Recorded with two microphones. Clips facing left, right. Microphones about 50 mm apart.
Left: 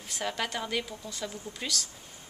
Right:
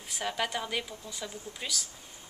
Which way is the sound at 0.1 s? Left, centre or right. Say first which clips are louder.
Even; centre.